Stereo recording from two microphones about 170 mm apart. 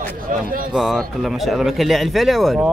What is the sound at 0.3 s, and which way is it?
Speech, 55° right (ahead or behind).